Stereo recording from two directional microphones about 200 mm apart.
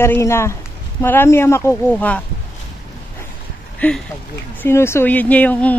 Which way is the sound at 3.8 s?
5° left (ahead or behind).